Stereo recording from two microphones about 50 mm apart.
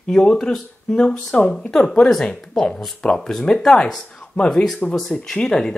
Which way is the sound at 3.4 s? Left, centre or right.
Centre.